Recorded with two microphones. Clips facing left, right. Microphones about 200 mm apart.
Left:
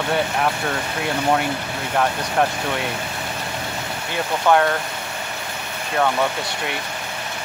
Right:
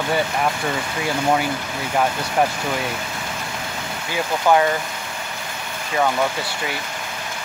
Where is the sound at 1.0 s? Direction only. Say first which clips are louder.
Even; 5° right (ahead or behind).